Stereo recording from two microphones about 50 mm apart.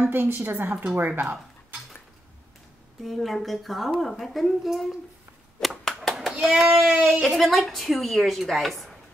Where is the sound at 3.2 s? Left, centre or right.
Centre.